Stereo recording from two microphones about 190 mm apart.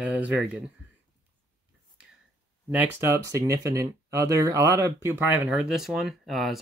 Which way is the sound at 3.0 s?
15° right (ahead or behind).